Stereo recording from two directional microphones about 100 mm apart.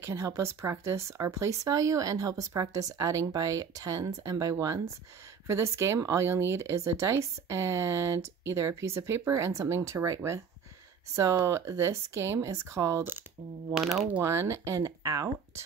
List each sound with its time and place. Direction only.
0.0 s speech: 30° right (ahead or behind)
13.7 s speech: 5° right (ahead or behind)
14.2 s speech: 30° right (ahead or behind)